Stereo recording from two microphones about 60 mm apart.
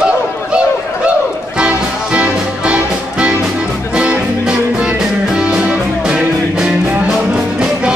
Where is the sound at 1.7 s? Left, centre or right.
Right.